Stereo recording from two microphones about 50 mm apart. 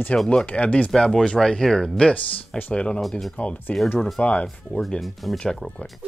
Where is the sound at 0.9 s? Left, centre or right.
Centre.